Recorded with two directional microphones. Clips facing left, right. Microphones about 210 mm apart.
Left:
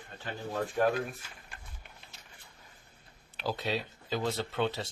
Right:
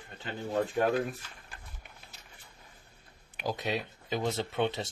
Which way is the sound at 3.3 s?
15° right (ahead or behind).